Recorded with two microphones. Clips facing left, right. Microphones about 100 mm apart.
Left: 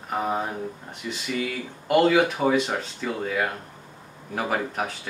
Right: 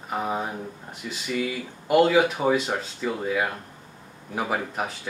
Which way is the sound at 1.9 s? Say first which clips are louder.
Even; 5° right (ahead or behind).